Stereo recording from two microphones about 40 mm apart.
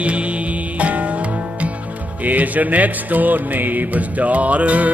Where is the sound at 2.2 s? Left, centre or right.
Right.